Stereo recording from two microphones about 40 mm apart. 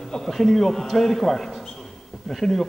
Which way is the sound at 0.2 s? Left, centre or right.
Centre.